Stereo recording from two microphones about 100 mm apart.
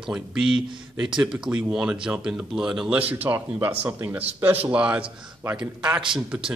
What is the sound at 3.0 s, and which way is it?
Speech, 15° right (ahead or behind).